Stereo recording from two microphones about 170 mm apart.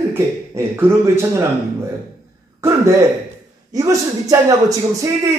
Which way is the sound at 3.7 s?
20° right (ahead or behind).